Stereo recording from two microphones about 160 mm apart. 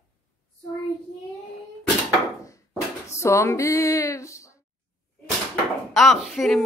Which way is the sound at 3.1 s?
20° left (ahead or behind).